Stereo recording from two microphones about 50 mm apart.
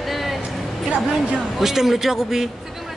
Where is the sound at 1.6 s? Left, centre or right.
Centre.